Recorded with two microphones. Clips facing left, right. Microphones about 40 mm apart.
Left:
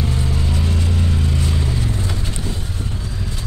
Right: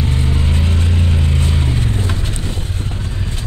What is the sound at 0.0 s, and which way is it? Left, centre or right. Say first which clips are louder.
Vehicle: right 2 dB; right.